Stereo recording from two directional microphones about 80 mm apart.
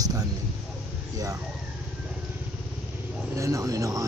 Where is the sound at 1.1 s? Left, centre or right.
Right.